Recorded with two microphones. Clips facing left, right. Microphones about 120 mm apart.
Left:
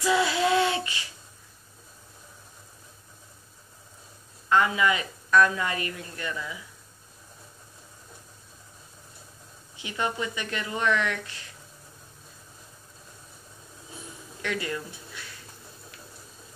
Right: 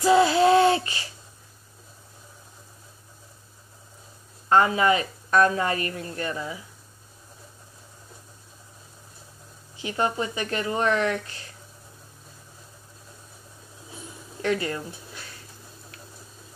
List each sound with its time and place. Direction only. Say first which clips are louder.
0.0 s child singing: right 6 dB; 35° right (ahead or behind)
4.5 s speech: right 3 dB; 40° right (ahead or behind)
9.8 s speech: right 4 dB; 40° right (ahead or behind)
14.4 s speech: right 5 dB; 35° right (ahead or behind)